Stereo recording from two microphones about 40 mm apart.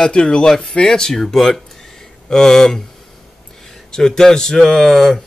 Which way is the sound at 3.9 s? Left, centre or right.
Centre.